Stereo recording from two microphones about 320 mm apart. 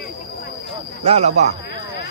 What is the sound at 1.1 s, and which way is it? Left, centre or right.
Speech, centre.